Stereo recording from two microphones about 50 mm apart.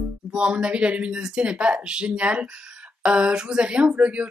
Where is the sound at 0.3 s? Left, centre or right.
Centre.